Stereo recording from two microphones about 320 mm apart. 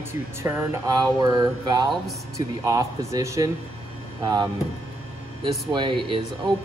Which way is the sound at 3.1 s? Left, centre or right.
Centre.